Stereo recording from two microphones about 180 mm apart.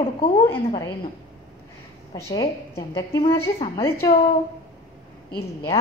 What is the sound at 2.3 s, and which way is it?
Speech, 20° left (ahead or behind).